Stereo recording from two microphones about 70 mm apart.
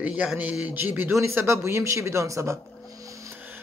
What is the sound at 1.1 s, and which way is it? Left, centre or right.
Speech, right.